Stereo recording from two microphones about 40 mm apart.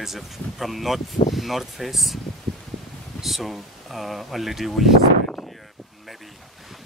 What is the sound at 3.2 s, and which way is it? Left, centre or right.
Speech, centre.